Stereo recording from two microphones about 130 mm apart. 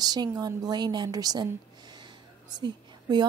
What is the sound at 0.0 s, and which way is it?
A woman's voice, 30° right (ahead or behind).